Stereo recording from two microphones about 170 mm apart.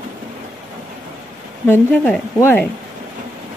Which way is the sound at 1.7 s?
10° left (ahead or behind).